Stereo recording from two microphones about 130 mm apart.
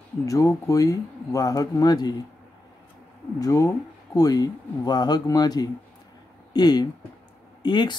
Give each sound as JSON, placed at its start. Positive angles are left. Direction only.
{"t": 0.2, "sound": "speech", "side_deg": 25}
{"t": 3.3, "sound": "speech", "side_deg": 25}